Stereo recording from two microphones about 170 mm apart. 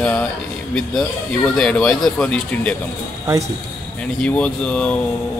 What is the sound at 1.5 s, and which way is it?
Speech, 5° left (ahead or behind).